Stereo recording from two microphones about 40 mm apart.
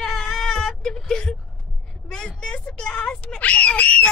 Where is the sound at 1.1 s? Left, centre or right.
Centre.